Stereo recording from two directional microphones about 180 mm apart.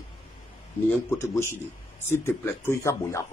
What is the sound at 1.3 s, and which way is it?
Speech, 15° left (ahead or behind).